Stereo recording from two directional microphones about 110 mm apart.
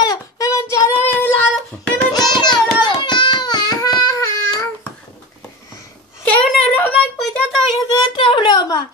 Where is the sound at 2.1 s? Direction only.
40° left (ahead or behind).